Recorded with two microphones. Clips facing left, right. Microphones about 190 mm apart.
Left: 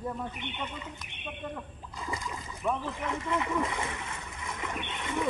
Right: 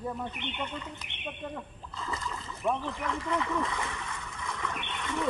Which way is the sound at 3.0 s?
20° left (ahead or behind).